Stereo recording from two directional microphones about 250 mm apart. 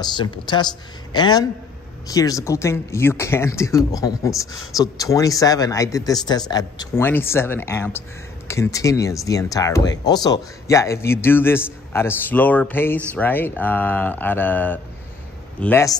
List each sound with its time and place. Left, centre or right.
0.0 s a man's voice: centre